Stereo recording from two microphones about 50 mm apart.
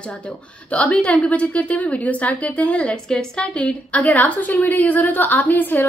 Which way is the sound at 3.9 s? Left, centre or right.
Left.